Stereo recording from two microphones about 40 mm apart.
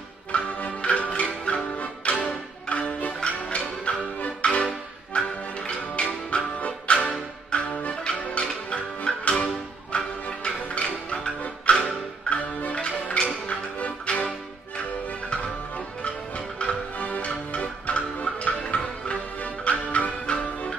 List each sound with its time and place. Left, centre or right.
0.3 s music: left
16.0 s music: left